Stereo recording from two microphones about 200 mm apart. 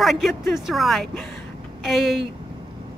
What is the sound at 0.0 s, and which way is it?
A woman's voice, centre (ahead or behind).